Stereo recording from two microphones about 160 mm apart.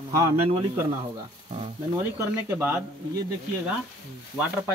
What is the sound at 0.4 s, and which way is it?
Speech, 40° right (ahead or behind).